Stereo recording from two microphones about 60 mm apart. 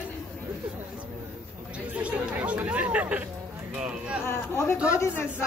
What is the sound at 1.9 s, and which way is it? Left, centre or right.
Chatter, right.